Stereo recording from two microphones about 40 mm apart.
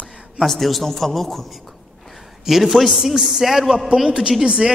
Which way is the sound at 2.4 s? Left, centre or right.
Centre.